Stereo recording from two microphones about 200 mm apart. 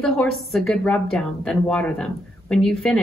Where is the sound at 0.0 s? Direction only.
Centre (ahead or behind).